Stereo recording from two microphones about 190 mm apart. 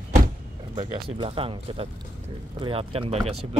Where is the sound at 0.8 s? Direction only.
30° right (ahead or behind).